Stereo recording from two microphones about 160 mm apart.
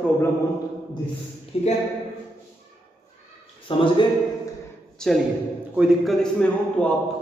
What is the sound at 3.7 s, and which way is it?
Speech, 30° left (ahead or behind).